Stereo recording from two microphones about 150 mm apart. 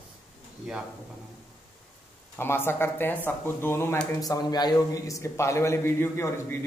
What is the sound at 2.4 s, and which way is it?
A man's voice, 15° left (ahead or behind).